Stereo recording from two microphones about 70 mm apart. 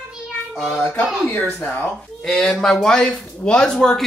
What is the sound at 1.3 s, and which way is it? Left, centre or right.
Speech, left.